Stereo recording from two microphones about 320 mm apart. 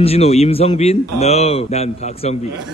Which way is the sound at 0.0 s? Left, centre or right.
Centre.